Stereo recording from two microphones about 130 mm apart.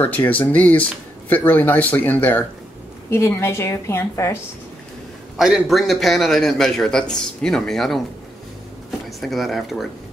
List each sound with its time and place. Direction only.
0.0 s a woman's voice: 15° left (ahead or behind)
5.4 s a man's voice: centre (ahead or behind)
9.2 s a man's voice: centre (ahead or behind)